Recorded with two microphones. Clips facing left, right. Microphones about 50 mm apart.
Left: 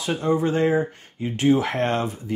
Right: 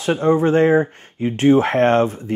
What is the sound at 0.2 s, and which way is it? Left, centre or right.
Speech, right.